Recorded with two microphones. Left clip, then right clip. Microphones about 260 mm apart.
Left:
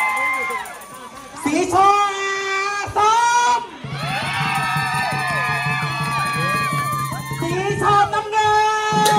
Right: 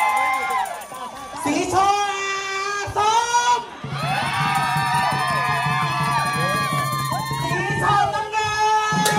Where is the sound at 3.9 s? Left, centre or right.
Right.